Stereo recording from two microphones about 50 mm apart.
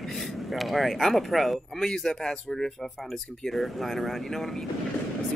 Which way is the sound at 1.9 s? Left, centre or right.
Centre.